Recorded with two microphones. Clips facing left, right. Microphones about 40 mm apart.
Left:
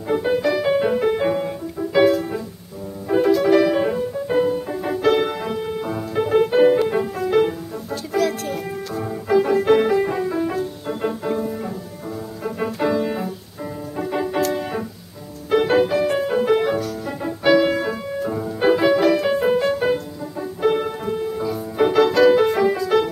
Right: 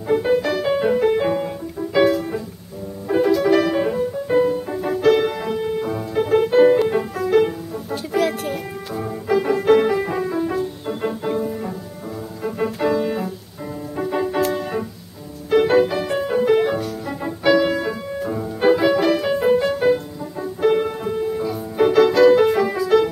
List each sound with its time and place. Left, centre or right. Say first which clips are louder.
0.1 s music: right 1 dB; centre
7.9 s music: right 1 dB; centre
9.0 s music: left 1 dB; centre
12.8 s organ: even; centre
13.9 s music: right 1 dB; centre